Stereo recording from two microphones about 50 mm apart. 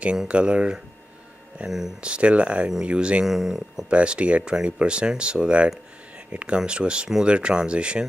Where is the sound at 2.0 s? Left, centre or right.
Right.